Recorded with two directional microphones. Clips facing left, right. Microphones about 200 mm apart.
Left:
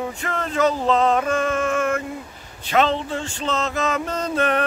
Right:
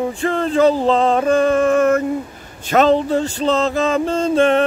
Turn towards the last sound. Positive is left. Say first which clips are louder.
# right 7 dB
turn(degrees=-25)  # may be behind; listen again after turning